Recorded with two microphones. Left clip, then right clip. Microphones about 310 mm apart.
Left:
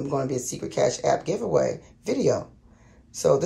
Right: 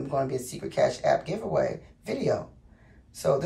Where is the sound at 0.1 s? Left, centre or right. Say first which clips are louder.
Even; centre.